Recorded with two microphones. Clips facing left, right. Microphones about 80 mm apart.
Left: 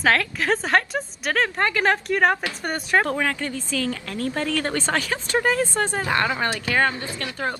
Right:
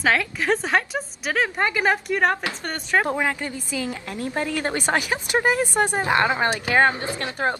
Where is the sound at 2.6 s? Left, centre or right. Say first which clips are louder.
Left 2 dB; centre.